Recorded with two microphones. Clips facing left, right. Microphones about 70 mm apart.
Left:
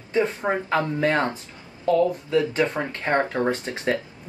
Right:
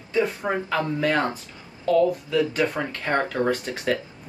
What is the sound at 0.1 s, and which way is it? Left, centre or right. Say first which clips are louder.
Speech: left 1 dB; left.